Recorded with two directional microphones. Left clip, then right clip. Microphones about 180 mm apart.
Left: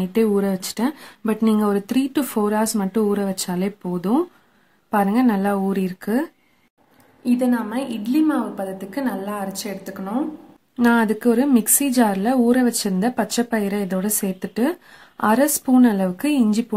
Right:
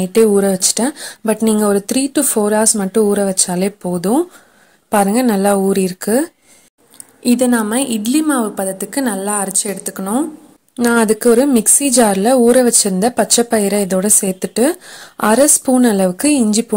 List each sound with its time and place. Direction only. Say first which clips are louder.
0.0 s a woman's voice: right 8 dB; 35° right (ahead or behind)
7.2 s a woman's voice: right 7 dB; 45° right (ahead or behind); by 16.6 s 30° right (ahead or behind)